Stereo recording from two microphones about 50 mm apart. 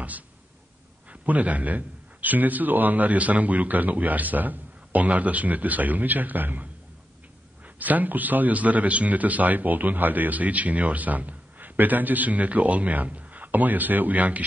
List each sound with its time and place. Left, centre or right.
1.2 s a man's voice: right